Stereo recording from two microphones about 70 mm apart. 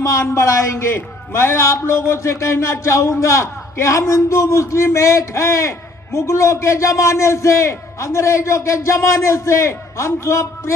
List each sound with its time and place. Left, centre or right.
0.0 s a man's voice: left